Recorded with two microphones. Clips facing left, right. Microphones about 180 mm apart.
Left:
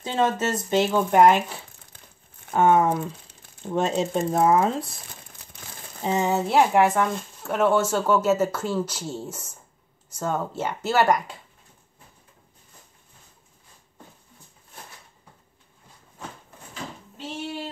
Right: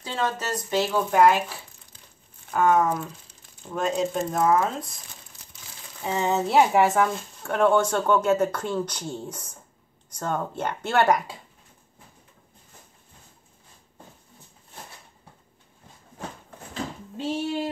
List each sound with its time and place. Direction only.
0.0 s speech: 25° left (ahead or behind)
2.5 s speech: 25° left (ahead or behind)
5.5 s crumpling: 55° left (ahead or behind)
6.0 s speech: 15° left (ahead or behind)
6.3 s speech: centre (ahead or behind)